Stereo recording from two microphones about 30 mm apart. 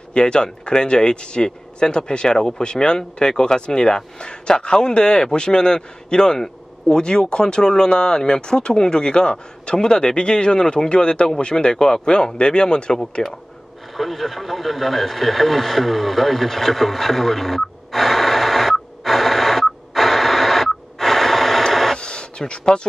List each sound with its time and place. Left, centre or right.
0.1 s speech: left
13.9 s radio: centre
21.9 s a sound: left
22.7 s speech: left